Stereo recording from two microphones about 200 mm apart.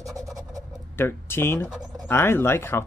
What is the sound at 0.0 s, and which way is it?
Scratch, 15° right (ahead or behind).